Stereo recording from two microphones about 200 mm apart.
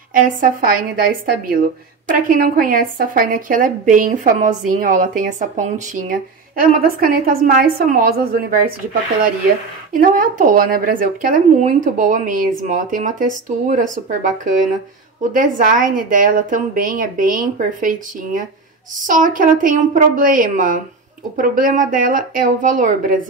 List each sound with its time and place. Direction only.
0.1 s speech: 45° right (ahead or behind)
9.9 s speech: 45° right (ahead or behind)